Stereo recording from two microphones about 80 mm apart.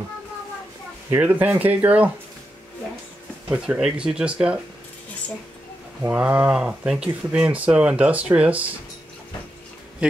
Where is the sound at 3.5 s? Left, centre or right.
Centre.